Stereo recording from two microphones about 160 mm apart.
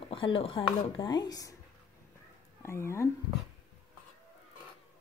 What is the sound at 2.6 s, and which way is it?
Speech, 15° left (ahead or behind).